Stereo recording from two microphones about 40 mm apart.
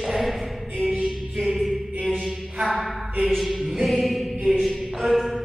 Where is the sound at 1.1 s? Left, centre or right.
Centre.